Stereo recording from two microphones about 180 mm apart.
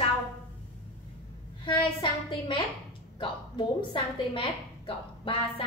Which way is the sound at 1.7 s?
25° left (ahead or behind).